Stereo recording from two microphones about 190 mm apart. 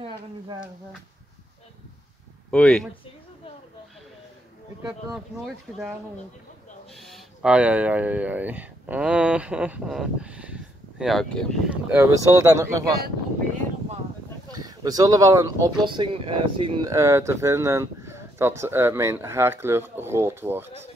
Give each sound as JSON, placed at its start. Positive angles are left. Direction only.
{"t": 2.5, "sound": "speech", "side_deg": 5}
{"t": 5.1, "sound": "speech", "side_deg": 0}
{"t": 7.0, "sound": "speech", "side_deg": 0}
{"t": 11.9, "sound": "speech", "side_deg": -10}
{"t": 14.5, "sound": "speech", "side_deg": -20}